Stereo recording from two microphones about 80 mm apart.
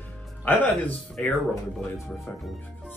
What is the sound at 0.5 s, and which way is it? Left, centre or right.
Speech, centre.